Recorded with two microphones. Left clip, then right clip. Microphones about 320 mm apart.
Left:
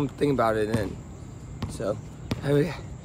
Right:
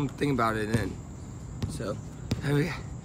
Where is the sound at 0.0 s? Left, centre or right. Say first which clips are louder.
Left 4 dB; centre.